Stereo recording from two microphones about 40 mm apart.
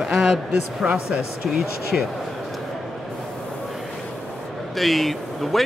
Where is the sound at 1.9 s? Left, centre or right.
Centre.